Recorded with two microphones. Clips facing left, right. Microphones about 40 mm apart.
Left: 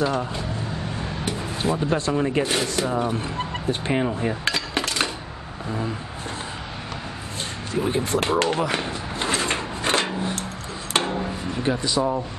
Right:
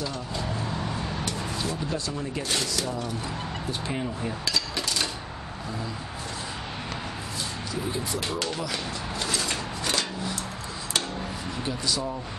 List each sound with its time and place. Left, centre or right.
1.6 s speech: left
2.4 s speech: left
3.8 s dishes: left
7.7 s speech: left
8.3 s a sound: left
11.6 s speech: left